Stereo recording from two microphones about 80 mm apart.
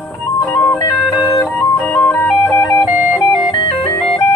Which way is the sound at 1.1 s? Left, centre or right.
Left.